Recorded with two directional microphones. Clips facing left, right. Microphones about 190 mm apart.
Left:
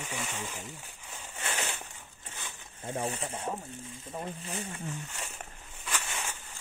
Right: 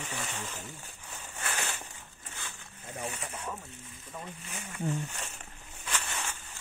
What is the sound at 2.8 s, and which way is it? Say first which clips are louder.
Speech: left 5 dB; 30° left (ahead or behind).